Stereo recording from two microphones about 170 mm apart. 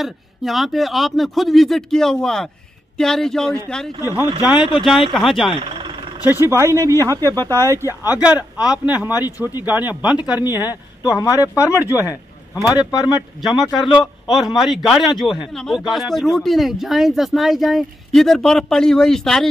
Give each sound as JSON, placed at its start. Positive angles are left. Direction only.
{"t": 0.0, "sound": "a man's voice", "side_deg": 0}
{"t": 4.2, "sound": "a man's voice", "side_deg": -10}
{"t": 5.8, "sound": "vehicle", "side_deg": -25}
{"t": 6.2, "sound": "speech", "side_deg": -15}
{"t": 7.5, "sound": "speech", "side_deg": 15}
{"t": 8.1, "sound": "speech", "side_deg": -10}
{"t": 10.4, "sound": "speech", "side_deg": 20}
{"t": 12.0, "sound": "a sound", "side_deg": -15}
{"t": 12.9, "sound": "speech", "side_deg": 20}
{"t": 13.4, "sound": "a man's voice", "side_deg": 0}